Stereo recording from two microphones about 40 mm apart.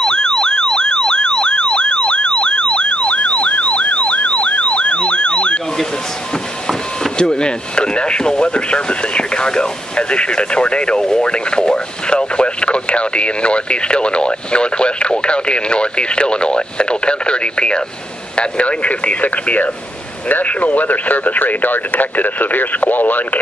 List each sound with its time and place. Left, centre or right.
0.0 s emergency vehicle: centre
7.2 s speech: left